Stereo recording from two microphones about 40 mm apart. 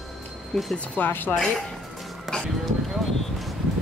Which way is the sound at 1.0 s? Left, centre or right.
Left.